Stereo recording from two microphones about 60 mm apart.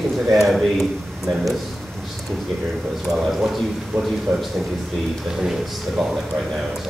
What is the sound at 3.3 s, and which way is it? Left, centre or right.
Speech, centre.